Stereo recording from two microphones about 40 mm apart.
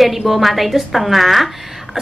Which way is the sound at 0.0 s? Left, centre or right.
Centre.